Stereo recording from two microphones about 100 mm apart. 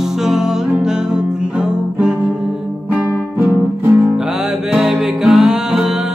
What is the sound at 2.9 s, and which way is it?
Music, 15° right (ahead or behind).